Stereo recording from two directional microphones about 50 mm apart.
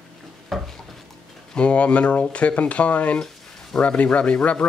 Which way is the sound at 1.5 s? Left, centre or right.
Left.